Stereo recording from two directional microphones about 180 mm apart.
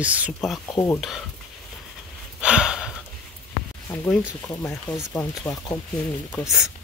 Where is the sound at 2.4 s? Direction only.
5° right (ahead or behind).